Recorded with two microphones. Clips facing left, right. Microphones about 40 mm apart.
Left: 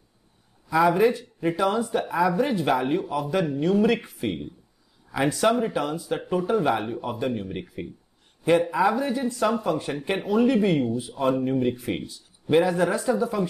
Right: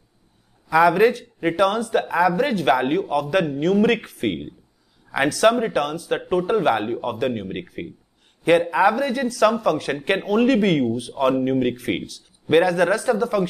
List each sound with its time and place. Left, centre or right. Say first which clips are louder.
0.7 s a man's voice: right 4 dB; right
8.5 s speech: right 4 dB; right
10.0 s speech: right 3 dB; right